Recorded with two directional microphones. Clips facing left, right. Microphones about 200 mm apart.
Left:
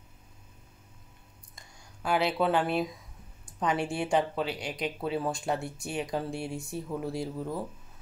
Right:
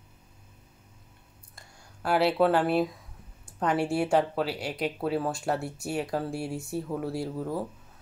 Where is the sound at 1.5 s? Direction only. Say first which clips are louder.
Right 2 dB; 5° right (ahead or behind).